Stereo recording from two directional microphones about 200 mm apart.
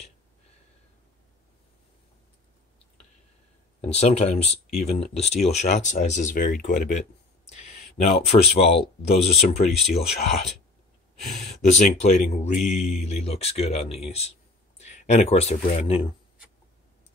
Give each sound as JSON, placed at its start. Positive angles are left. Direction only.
{"t": 3.8, "sound": "speech", "side_deg": 30}
{"t": 8.3, "sound": "speech", "side_deg": 30}
{"t": 11.6, "sound": "speech", "side_deg": 35}